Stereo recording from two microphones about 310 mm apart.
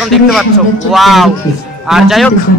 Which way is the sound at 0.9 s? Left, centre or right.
Centre.